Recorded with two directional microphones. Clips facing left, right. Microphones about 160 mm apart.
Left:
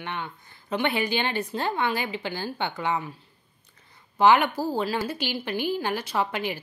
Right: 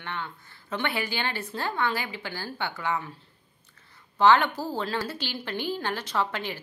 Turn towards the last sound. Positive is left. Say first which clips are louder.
# left 2 dB
turn(degrees=15)  # may be behind; listen again after turning